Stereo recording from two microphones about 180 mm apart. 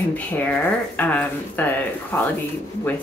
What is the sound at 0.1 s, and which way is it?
Speech, 10° left (ahead or behind).